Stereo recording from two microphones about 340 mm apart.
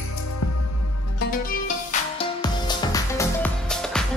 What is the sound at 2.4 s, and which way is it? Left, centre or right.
Music, centre.